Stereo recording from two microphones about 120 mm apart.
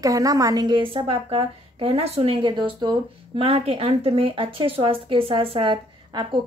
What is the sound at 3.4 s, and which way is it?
A woman's voice, 55° right (ahead or behind).